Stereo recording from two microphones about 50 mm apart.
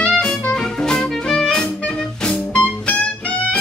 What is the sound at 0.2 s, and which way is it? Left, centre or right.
Music, centre.